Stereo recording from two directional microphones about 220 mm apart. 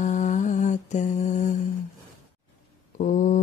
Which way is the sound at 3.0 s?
35° left (ahead or behind).